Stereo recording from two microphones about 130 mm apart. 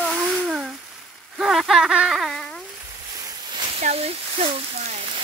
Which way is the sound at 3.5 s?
45° right (ahead or behind).